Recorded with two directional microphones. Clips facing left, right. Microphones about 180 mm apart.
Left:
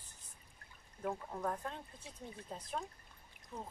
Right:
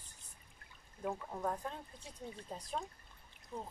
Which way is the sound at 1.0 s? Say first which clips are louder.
Even; 5° right (ahead or behind).